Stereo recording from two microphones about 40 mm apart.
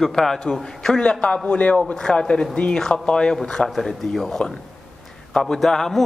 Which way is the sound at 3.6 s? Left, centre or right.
Centre.